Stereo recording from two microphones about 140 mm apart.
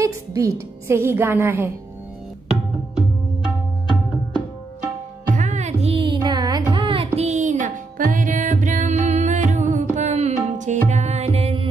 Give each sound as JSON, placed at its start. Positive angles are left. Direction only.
{"t": 0.0, "sound": "a woman's voice", "side_deg": -25}
{"t": 5.3, "sound": "music", "side_deg": -55}
{"t": 6.7, "sound": "carnatic music", "side_deg": -35}
{"t": 7.2, "sound": "music", "side_deg": -55}